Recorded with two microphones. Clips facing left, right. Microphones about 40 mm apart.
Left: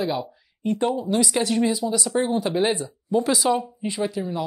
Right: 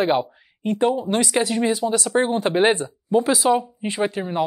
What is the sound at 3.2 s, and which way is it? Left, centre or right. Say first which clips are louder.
Speech: right 2 dB; right.